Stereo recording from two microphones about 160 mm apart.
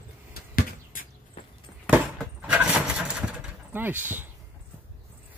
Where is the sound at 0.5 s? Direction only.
60° left (ahead or behind).